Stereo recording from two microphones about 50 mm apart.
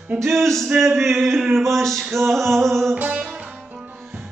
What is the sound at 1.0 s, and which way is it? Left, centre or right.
Male singing, centre.